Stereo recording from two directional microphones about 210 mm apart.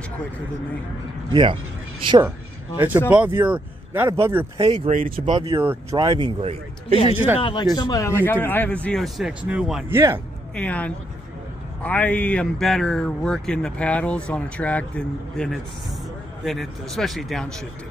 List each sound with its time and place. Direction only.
1.3 s speech: 25° right (ahead or behind)
3.1 s speech: 10° right (ahead or behind)
4.8 s speech: 40° right (ahead or behind)
5.2 s speech: 25° right (ahead or behind)
5.6 s speech: 15° right (ahead or behind)
7.3 s speech: 25° left (ahead or behind); by 10.2 s 10° right (ahead or behind)
10.5 s speech: 5° left (ahead or behind)